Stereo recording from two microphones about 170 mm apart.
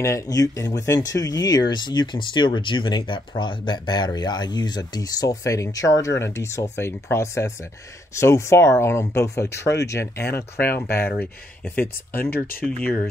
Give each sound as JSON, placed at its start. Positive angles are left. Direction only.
{"t": 0.0, "sound": "speech", "side_deg": 20}
{"t": 12.6, "sound": "speech", "side_deg": 5}